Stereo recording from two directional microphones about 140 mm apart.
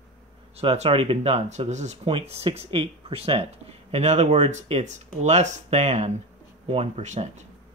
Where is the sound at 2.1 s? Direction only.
45° right (ahead or behind).